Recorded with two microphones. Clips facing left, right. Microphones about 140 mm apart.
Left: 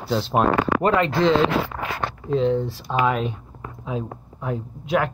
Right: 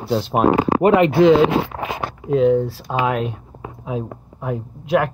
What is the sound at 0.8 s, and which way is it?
Speech, 15° right (ahead or behind).